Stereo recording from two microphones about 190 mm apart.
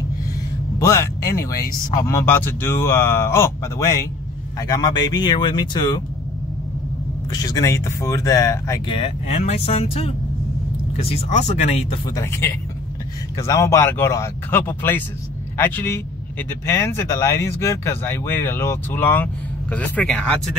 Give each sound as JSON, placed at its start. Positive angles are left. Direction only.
{"t": 0.7, "sound": "speech", "side_deg": 15}
{"t": 7.2, "sound": "speech", "side_deg": 20}
{"t": 8.9, "sound": "speech", "side_deg": 35}
{"t": 12.2, "sound": "speech", "side_deg": 15}